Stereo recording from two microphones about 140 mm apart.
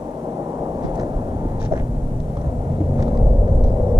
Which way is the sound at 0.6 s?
25° right (ahead or behind).